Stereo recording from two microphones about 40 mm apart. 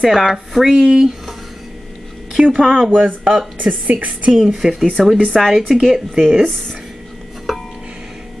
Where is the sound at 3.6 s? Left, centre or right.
Right.